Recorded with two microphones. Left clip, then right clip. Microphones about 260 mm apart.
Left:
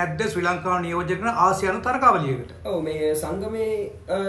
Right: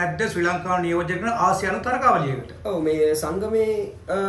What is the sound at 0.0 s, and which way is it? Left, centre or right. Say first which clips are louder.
A man's voice: right 1 dB; centre.